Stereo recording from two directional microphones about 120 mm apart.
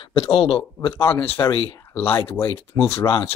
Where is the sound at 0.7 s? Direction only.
20° left (ahead or behind).